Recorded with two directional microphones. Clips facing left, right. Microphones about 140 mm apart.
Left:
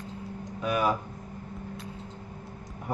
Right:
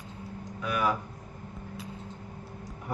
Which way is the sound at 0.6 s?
25° left (ahead or behind).